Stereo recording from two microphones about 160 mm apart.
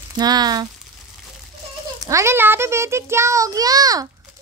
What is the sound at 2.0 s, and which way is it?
A child's voice, 20° right (ahead or behind).